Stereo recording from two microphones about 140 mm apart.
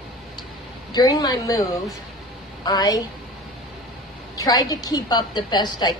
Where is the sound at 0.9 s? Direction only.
30° left (ahead or behind).